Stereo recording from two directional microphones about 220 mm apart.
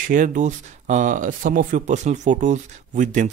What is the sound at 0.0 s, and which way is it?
Speech, 35° right (ahead or behind).